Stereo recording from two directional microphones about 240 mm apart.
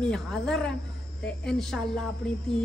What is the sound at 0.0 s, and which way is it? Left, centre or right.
A man's voice, centre.